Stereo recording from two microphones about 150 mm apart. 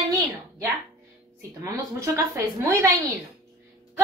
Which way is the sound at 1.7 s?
20° right (ahead or behind).